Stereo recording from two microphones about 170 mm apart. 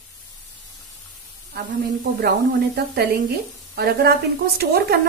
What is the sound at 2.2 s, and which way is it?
A woman's voice, 70° right (ahead or behind).